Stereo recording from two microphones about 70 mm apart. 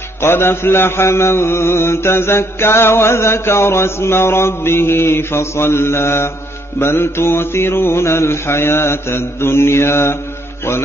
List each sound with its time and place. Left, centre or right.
0.2 s mantra: left